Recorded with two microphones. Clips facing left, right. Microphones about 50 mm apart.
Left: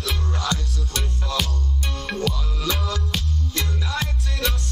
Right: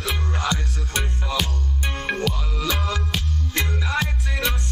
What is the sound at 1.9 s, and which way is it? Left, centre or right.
Music, right.